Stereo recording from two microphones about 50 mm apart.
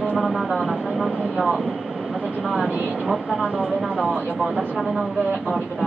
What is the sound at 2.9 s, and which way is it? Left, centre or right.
Speech, centre.